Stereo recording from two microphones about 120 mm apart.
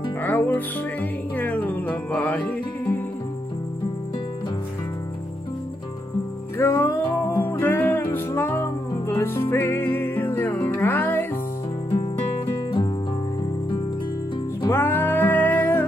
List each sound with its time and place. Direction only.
0.2 s music: 15° left (ahead or behind)
6.6 s music: 20° left (ahead or behind)
14.7 s music: 20° left (ahead or behind)